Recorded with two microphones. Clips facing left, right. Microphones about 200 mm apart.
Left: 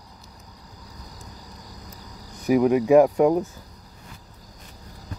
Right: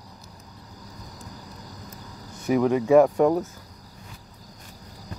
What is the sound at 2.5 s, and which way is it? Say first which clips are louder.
Speech: left 2 dB; 10° left (ahead or behind).